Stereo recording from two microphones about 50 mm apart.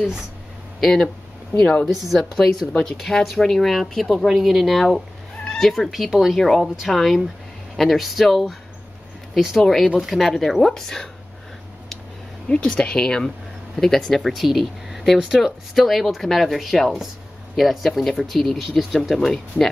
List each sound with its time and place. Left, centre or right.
0.7 s speech: centre
2.1 s speech: centre
3.0 s speech: centre
9.6 s speech: centre
12.4 s speech: centre